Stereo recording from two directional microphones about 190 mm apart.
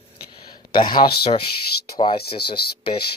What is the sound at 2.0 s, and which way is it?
Speech, 25° left (ahead or behind).